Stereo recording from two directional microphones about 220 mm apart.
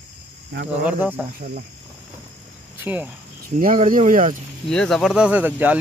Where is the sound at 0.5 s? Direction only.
45° right (ahead or behind).